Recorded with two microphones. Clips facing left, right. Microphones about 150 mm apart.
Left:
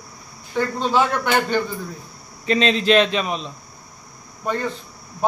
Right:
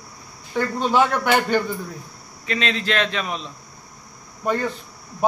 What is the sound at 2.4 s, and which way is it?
Speech, 25° left (ahead or behind).